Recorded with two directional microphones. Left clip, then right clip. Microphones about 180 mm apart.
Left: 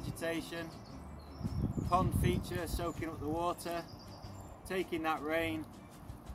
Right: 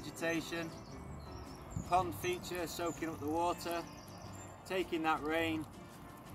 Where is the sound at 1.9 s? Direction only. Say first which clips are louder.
Even; 30° left (ahead or behind).